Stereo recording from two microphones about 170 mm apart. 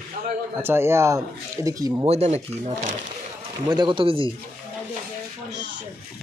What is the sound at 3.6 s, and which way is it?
Speech, 25° right (ahead or behind).